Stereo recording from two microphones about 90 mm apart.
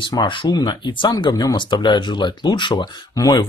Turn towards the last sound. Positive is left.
turn(degrees=45)  # may be behind; listen again after turning